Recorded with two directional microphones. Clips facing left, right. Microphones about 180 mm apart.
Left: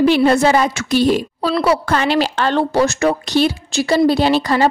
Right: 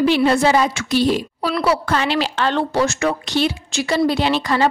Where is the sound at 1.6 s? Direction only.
45° left (ahead or behind).